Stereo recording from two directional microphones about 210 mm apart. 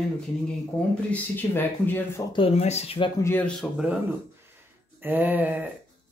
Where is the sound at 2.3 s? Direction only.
30° left (ahead or behind).